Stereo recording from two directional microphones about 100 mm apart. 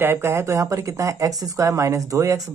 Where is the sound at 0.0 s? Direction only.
25° right (ahead or behind).